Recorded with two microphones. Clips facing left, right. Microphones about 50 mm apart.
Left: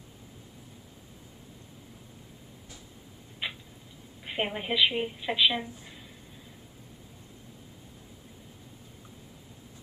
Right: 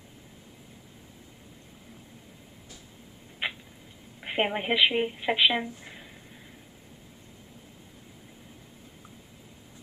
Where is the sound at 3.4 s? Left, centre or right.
Right.